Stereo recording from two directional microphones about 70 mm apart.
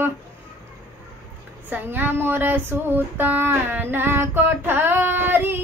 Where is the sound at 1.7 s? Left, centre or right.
Right.